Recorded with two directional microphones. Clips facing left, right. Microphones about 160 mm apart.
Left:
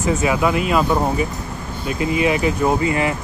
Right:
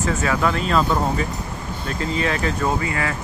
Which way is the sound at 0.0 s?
15° left (ahead or behind).